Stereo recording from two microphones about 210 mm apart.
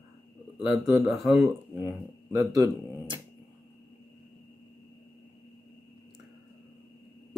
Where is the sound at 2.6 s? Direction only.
20° right (ahead or behind).